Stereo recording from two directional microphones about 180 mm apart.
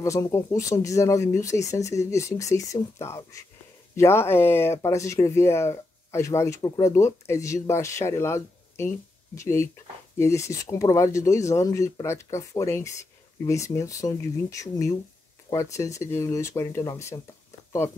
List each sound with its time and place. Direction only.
0.0 s speech: 15° left (ahead or behind)